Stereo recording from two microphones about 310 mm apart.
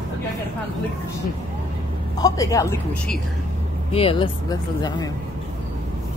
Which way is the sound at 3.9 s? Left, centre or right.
Centre.